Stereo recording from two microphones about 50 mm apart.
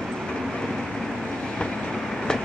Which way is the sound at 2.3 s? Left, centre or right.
Centre.